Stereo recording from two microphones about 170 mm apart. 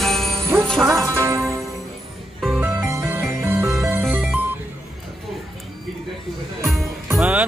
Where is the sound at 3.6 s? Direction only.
Centre (ahead or behind).